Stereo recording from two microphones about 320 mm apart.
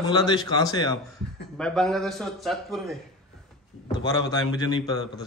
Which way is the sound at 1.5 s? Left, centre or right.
Centre.